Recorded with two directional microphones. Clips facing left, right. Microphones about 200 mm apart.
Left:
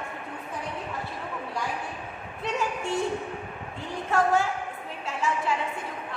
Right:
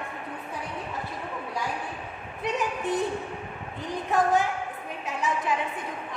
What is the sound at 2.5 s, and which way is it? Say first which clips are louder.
A woman's voice: right 1 dB; 20° right (ahead or behind).